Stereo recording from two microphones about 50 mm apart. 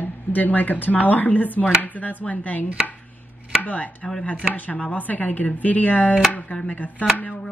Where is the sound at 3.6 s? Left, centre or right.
Left.